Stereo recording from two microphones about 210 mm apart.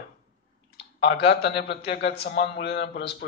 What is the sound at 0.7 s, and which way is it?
A man's voice, 55° left (ahead or behind).